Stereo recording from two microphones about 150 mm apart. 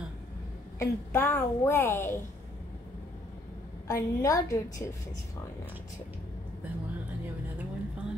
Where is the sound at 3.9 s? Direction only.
20° left (ahead or behind).